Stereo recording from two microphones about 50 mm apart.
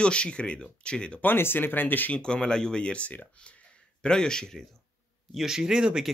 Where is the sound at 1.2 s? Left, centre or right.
Left.